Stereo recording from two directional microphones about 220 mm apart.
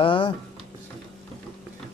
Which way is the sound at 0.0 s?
25° left (ahead or behind).